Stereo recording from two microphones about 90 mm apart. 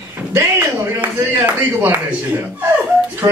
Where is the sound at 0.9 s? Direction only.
20° right (ahead or behind).